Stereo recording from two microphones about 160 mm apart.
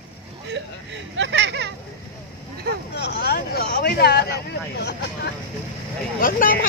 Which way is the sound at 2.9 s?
90° left.